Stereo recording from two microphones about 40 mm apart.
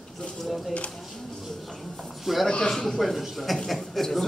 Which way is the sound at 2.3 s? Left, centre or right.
Centre.